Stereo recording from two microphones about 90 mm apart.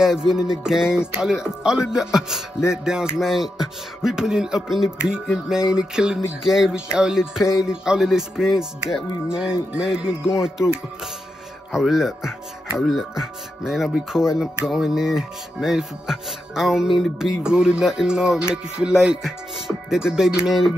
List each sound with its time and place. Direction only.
0.0 s speech: 5° right (ahead or behind)
11.7 s music: 5° right (ahead or behind)
19.9 s speech: 5° right (ahead or behind)